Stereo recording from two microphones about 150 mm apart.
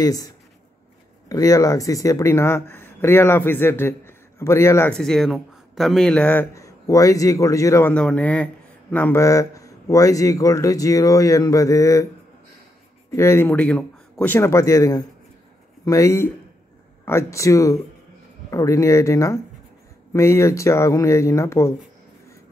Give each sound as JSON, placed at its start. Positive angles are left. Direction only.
{"t": 0.0, "sound": "speech", "side_deg": 25}
{"t": 1.3, "sound": "speech", "side_deg": 25}
{"t": 4.9, "sound": "speech", "side_deg": 5}
{"t": 6.5, "sound": "speech", "side_deg": 20}
{"t": 7.9, "sound": "speech", "side_deg": 5}
{"t": 13.1, "sound": "speech", "side_deg": 20}